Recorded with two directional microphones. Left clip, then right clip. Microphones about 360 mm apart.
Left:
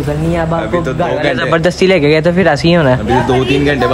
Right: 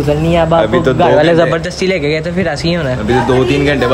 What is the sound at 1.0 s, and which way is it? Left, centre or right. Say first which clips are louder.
A man's voice: right 7 dB; centre.